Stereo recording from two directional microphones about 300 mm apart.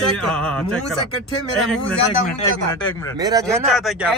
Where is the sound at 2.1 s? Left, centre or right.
Left.